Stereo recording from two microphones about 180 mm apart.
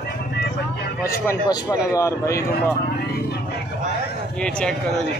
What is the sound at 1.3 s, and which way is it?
Speech, 20° left (ahead or behind).